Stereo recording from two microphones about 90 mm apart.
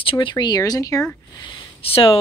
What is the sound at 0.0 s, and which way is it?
Speech, 70° left (ahead or behind).